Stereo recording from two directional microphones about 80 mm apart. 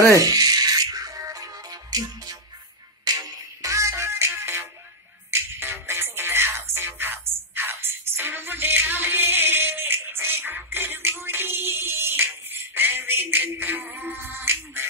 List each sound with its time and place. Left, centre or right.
0.2 s music: right